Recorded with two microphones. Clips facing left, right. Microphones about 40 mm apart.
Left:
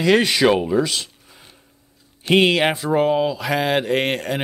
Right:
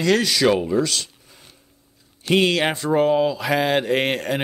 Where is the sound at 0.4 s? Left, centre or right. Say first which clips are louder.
Left 2 dB; centre.